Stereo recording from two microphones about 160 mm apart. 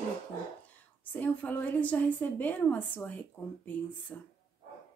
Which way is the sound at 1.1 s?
10° left (ahead or behind).